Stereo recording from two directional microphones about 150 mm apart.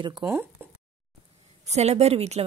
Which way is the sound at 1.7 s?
45° right (ahead or behind).